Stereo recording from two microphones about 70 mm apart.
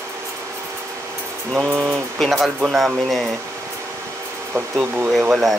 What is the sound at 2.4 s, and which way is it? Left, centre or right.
Speech, centre.